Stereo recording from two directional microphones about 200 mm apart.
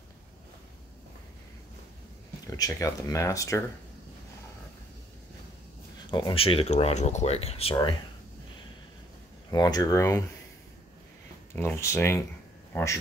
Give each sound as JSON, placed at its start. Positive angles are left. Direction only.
{"t": 2.4, "sound": "speech", "side_deg": 20}
{"t": 6.0, "sound": "speech", "side_deg": 25}
{"t": 9.5, "sound": "speech", "side_deg": 20}
{"t": 11.5, "sound": "speech", "side_deg": 10}